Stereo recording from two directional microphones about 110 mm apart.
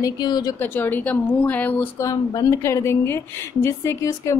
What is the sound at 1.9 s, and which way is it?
A woman's voice, 25° left (ahead or behind).